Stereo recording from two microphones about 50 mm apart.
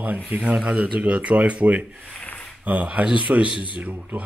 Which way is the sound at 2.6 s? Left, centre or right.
Right.